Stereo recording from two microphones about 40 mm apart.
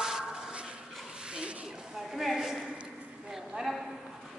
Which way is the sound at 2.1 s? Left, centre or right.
Centre.